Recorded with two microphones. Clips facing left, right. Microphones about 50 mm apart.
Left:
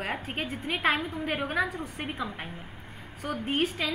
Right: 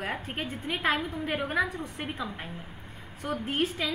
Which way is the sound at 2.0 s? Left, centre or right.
Centre.